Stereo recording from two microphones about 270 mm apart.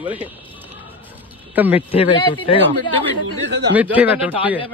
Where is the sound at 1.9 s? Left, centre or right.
Centre.